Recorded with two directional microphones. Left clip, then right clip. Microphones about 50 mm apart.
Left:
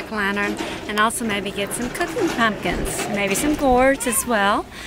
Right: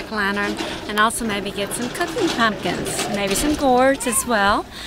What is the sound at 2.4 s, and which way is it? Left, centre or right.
Speech, centre.